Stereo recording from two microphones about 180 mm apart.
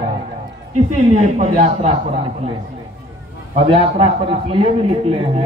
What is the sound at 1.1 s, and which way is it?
Speech, 35° right (ahead or behind).